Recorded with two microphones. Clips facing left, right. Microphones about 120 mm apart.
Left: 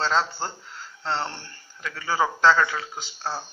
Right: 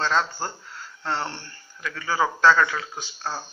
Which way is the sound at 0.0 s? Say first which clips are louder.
Even; 25° left (ahead or behind).